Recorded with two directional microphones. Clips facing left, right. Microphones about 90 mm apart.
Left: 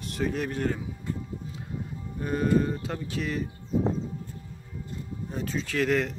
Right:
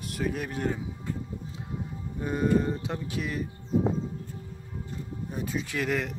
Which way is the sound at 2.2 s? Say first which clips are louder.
Left 1 dB; 15° right (ahead or behind).